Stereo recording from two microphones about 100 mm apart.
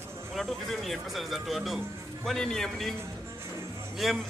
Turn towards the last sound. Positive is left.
turn(degrees=0)  # may be behind; listen again after turning